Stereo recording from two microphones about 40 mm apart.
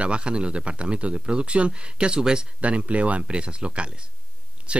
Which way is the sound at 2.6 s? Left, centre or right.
Right.